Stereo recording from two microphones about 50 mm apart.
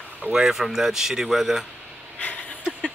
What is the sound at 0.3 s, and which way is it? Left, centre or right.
Speech, centre.